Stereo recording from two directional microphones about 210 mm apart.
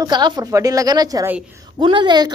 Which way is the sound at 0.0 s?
20° right (ahead or behind).